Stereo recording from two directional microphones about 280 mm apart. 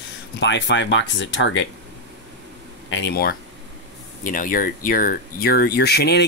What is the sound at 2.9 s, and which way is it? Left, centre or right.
Speech, left.